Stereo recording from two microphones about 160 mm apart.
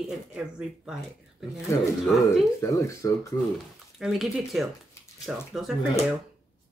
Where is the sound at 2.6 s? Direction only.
20° left (ahead or behind).